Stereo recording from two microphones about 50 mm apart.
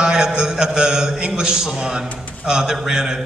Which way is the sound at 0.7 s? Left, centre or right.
Centre.